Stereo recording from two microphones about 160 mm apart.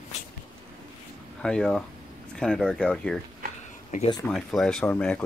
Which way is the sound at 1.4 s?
5° left (ahead or behind).